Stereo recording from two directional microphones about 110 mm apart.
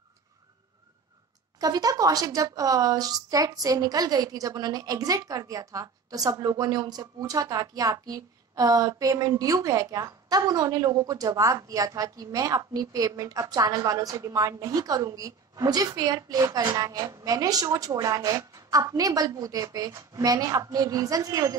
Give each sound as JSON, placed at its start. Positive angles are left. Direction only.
{"t": 1.6, "sound": "a woman's voice", "side_deg": -35}